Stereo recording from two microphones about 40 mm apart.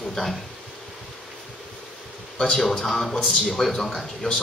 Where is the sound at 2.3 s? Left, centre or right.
Left.